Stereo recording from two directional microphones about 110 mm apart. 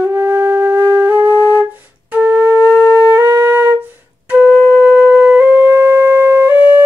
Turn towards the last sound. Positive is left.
turn(degrees=-15)  # may be behind; listen again after turning